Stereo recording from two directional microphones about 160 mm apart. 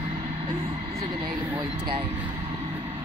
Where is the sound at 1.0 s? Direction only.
25° right (ahead or behind).